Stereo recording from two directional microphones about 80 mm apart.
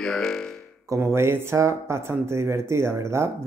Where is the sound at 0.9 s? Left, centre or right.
Right.